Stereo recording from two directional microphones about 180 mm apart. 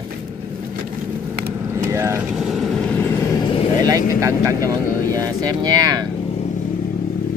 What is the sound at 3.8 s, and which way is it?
Speech, 20° right (ahead or behind).